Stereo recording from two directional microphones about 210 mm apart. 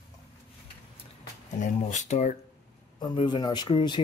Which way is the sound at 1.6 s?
35° left (ahead or behind).